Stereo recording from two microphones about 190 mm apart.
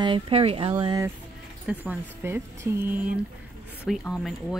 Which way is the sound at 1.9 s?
10° right (ahead or behind).